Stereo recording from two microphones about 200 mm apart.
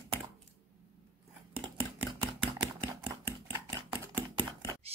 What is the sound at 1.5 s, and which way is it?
Scissors, 25° right (ahead or behind).